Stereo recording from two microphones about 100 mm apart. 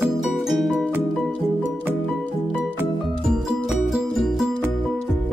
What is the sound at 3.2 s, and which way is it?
Music, 5° right (ahead or behind).